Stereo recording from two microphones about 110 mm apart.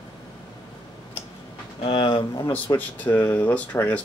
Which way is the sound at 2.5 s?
15° left (ahead or behind).